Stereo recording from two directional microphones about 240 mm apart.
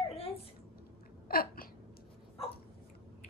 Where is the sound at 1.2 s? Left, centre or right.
Left.